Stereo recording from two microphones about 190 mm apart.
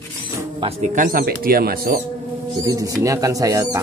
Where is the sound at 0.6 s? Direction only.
35° right (ahead or behind); by 2.0 s 55° right (ahead or behind).